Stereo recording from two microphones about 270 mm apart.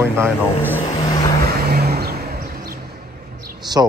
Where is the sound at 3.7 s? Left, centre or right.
Centre.